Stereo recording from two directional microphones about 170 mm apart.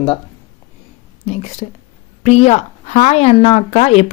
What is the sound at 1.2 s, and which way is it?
A woman's voice, 40° left (ahead or behind).